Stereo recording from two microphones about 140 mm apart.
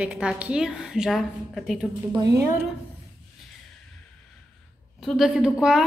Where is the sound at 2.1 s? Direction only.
30° right (ahead or behind).